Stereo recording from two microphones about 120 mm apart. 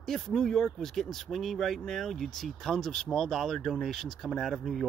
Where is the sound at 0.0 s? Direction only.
5° left (ahead or behind).